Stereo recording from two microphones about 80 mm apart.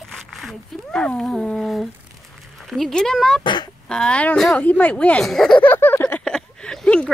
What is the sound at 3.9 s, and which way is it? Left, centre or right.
Speech, centre.